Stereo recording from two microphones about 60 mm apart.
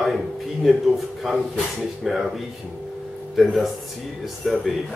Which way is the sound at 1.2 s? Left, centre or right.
Centre.